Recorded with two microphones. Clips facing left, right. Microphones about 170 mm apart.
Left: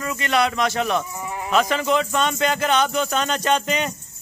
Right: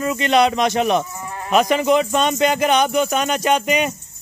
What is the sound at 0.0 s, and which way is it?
Speech, 20° right (ahead or behind).